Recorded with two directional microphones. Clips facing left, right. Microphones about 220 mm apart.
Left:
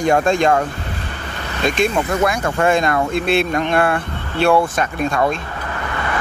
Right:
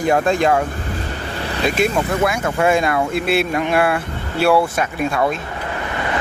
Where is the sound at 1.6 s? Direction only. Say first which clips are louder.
Left 1 dB; 5° right (ahead or behind).